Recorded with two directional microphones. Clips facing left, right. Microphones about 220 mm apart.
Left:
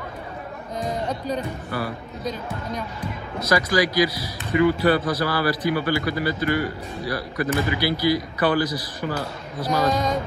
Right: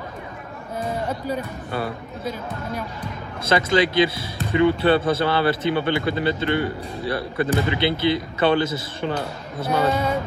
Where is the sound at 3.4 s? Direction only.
25° right (ahead or behind).